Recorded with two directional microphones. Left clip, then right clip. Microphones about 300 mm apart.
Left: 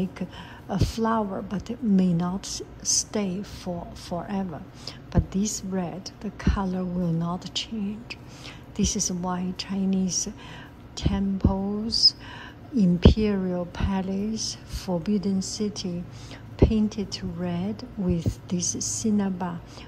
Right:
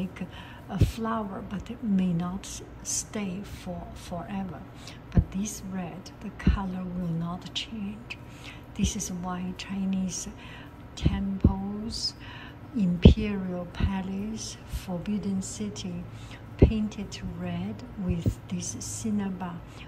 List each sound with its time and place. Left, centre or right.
0.0 s a woman's voice: centre